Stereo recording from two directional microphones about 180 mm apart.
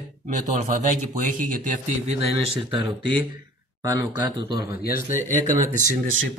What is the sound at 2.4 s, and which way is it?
Speech, 30° right (ahead or behind).